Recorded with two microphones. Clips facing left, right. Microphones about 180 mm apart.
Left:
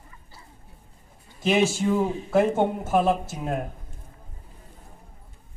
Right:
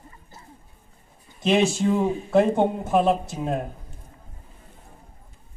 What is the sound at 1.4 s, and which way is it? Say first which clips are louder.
Speech: right 1 dB; 5° left (ahead or behind).